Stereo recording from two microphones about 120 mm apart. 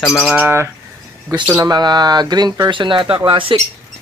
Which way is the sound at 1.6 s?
35° right (ahead or behind).